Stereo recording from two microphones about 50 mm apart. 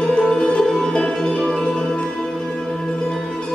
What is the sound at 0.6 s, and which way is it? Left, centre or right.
Music, centre.